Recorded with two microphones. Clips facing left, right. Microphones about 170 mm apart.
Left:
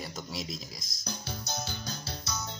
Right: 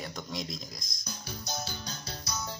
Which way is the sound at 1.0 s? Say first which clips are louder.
Left 2 dB; 65° left (ahead or behind).